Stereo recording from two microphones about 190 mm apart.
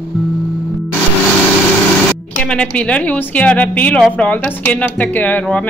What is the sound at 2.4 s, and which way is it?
A woman's voice, 5° left (ahead or behind).